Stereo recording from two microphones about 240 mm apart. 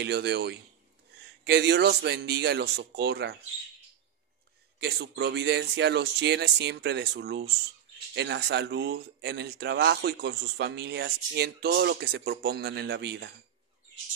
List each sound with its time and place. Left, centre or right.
0.0 s speech: right
4.7 s speech: right